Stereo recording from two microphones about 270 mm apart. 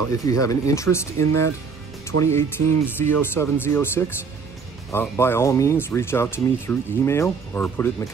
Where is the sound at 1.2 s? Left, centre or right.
Right.